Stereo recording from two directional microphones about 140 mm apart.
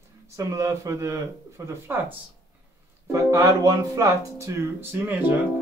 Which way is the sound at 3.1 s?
25° right (ahead or behind).